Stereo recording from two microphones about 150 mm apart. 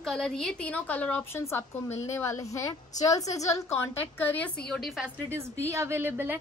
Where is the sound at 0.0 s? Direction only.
5° left (ahead or behind).